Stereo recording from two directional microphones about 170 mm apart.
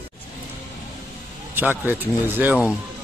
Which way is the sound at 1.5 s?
10° right (ahead or behind).